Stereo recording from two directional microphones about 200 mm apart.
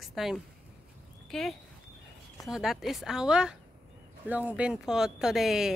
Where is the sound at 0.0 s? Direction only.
Centre (ahead or behind).